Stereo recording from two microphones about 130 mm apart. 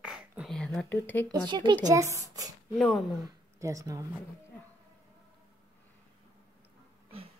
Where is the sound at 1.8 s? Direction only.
25° right (ahead or behind).